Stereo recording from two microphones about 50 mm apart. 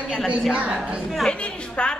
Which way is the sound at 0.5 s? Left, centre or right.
Right.